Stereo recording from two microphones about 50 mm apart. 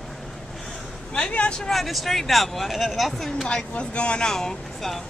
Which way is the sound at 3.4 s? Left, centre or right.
Left.